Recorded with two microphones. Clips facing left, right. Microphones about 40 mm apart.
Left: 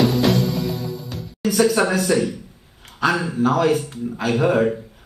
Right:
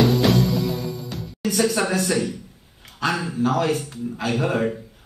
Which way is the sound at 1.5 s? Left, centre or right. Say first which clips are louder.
Left 4 dB; centre.